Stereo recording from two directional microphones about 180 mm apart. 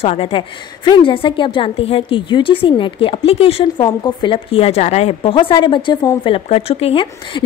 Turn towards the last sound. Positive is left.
turn(degrees=30)  # may be behind; listen again after turning